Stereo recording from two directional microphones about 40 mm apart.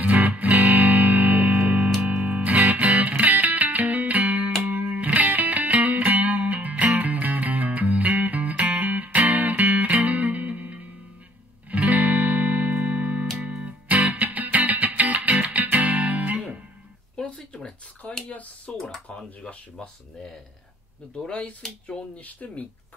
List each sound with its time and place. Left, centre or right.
0.0 s music: right
17.2 s a sound: left
18.7 s computer keyboard: left
19.1 s a sound: left
21.3 s speech: left
22.2 s speech: left